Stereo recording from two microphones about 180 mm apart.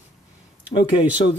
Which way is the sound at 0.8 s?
30° left (ahead or behind).